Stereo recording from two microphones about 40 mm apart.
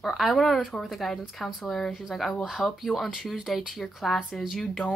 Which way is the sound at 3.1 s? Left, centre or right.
Centre.